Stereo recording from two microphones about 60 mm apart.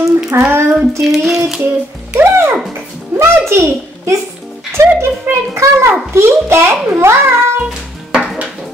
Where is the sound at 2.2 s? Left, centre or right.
Right.